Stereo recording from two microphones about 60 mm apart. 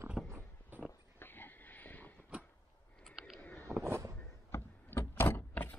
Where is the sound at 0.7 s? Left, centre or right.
Right.